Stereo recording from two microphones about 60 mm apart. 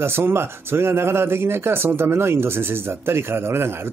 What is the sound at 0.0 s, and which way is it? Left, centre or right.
A man's voice, right.